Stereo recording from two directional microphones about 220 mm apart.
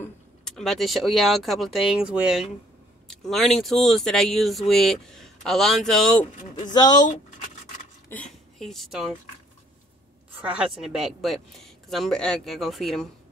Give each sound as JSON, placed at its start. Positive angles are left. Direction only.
{"t": 0.0, "sound": "speech", "side_deg": 0}
{"t": 6.7, "sound": "speech", "side_deg": 20}
{"t": 8.1, "sound": "speech", "side_deg": 5}
{"t": 10.6, "sound": "speech", "side_deg": 0}